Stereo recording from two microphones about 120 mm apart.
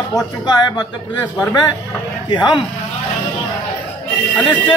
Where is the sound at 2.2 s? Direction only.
40° left (ahead or behind).